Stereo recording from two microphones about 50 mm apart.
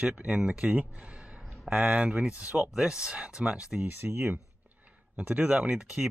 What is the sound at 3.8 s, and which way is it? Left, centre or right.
Speech, right.